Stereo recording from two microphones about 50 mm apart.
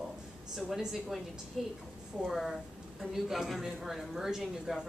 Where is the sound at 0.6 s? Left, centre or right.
Centre.